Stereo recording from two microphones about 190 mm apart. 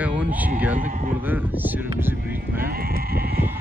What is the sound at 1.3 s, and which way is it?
Speech, 10° right (ahead or behind).